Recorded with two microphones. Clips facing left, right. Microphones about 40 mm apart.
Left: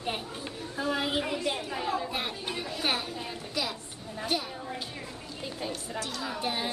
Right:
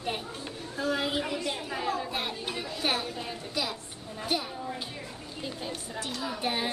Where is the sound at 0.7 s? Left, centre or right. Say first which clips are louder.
Even; centre.